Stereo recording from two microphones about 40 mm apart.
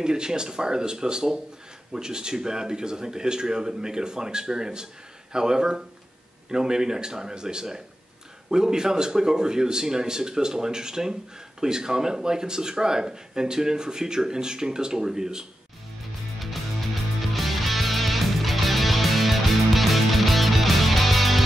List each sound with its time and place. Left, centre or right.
0.0 s speech: centre
17.2 s music: centre